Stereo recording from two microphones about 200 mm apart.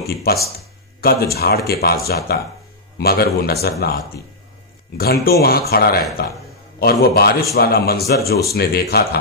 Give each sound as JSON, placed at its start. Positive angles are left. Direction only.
{"t": 1.0, "sound": "speech", "side_deg": 50}